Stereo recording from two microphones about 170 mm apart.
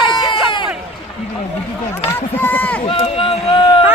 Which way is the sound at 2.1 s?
10° left (ahead or behind).